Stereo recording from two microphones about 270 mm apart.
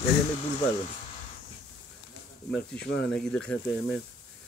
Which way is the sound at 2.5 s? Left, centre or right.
Centre.